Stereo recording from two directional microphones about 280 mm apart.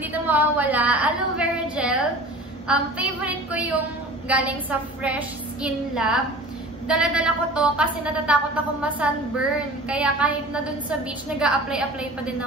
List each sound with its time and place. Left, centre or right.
0.0 s a woman's voice: centre